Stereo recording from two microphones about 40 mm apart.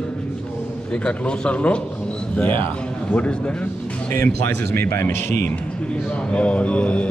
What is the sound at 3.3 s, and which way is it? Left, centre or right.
Speech, left.